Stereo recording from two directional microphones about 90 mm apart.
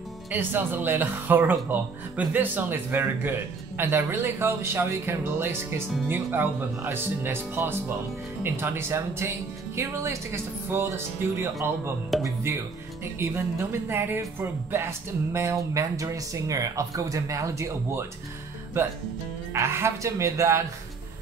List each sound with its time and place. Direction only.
0.3 s speech: 20° right (ahead or behind)
12.1 s speech: centre (ahead or behind)
13.2 s speech: 25° right (ahead or behind)
19.5 s speech: 30° right (ahead or behind)